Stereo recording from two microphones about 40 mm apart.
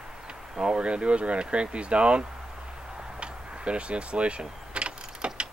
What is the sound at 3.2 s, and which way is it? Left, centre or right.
Vehicle, right.